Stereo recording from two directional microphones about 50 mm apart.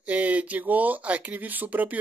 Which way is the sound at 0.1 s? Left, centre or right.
Right.